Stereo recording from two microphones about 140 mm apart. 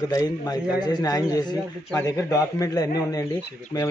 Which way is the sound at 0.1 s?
25° left (ahead or behind).